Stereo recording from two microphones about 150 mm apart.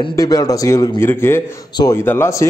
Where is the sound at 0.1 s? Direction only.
25° left (ahead or behind).